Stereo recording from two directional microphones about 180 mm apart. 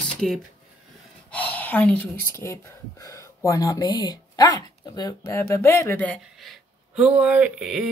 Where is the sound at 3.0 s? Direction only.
20° left (ahead or behind).